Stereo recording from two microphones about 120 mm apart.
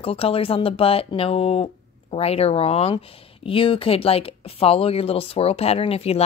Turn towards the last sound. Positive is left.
turn(degrees=55)  # may be behind; listen again after turning